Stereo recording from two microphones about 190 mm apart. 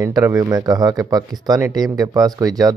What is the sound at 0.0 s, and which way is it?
Speech, 20° right (ahead or behind).